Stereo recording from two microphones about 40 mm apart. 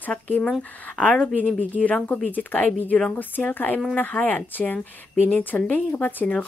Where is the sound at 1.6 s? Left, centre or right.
Left.